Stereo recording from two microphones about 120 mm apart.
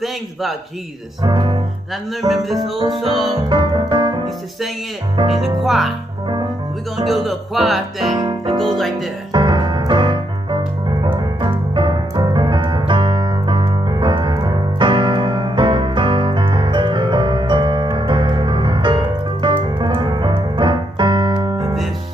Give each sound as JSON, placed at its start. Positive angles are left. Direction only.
{"t": 0.0, "sound": "music", "side_deg": 0}
{"t": 1.2, "sound": "music", "side_deg": -40}
{"t": 2.2, "sound": "music", "side_deg": 0}
{"t": 3.1, "sound": "music", "side_deg": -40}
{"t": 5.6, "sound": "music", "side_deg": 0}
{"t": 7.1, "sound": "music", "side_deg": 0}
{"t": 8.2, "sound": "music", "side_deg": -45}
{"t": 8.6, "sound": "music", "side_deg": 0}
{"t": 9.3, "sound": "music", "side_deg": -40}